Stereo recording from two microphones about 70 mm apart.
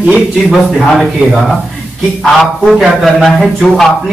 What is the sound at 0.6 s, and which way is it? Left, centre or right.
Speech, centre.